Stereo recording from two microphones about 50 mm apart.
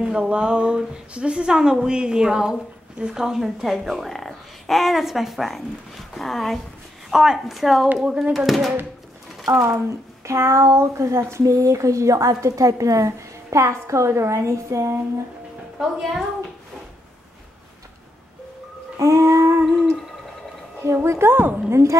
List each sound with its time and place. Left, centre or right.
0.0 s speech: right; by 6.6 s centre
7.1 s a woman's voice: centre
7.4 s speech: centre
8.0 s speech: centre
8.5 s speech: centre
9.7 s speech: right
15.8 s speech: centre
18.9 s a sound: right
20.8 s a woman's voice: right